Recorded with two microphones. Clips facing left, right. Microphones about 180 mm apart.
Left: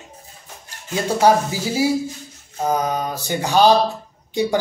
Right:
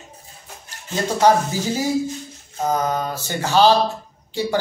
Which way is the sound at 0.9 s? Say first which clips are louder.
Left 1 dB; 10° left (ahead or behind).